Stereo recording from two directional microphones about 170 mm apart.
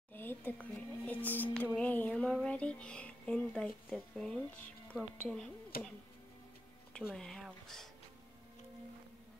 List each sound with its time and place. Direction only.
0.1 s music: 10° left (ahead or behind)
5.7 s music: 60° left (ahead or behind)
6.9 s a sound: 5° left (ahead or behind)